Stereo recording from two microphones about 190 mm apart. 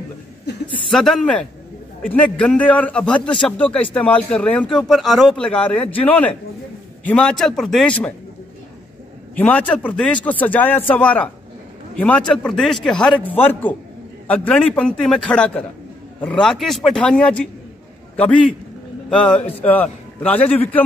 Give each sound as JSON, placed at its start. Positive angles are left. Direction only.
{"t": 0.5, "sound": "a sound", "side_deg": 60}
{"t": 0.8, "sound": "a man's voice", "side_deg": 0}
{"t": 9.4, "sound": "a man's voice", "side_deg": 10}
{"t": 19.0, "sound": "a man's voice", "side_deg": 5}